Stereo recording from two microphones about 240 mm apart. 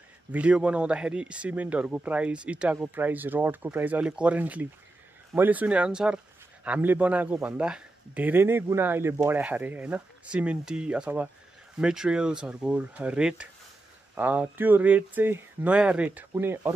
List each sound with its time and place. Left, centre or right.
0.3 s speech: centre